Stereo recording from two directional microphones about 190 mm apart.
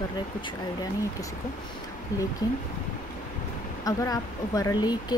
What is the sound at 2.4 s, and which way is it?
Speech, 20° left (ahead or behind).